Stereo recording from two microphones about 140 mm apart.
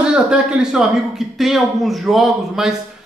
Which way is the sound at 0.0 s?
5° right (ahead or behind).